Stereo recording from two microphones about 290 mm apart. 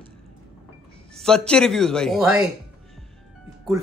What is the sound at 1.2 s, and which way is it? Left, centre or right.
A man's voice, centre.